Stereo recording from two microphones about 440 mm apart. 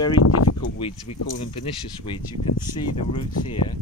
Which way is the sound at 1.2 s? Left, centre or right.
Centre.